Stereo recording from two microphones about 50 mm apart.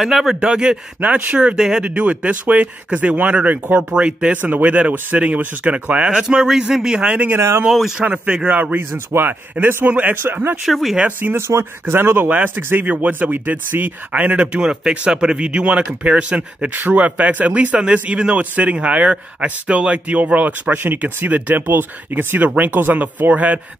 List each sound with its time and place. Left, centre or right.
0.0 s speech: centre
0.3 s speech: centre
1.0 s speech: right
1.6 s speech: centre
1.9 s speech: right
4.4 s speech: right
5.9 s speech: centre
8.9 s speech: right
9.8 s speech: right
10.6 s speech: centre
11.3 s speech: right
12.3 s speech: right
21.6 s speech: right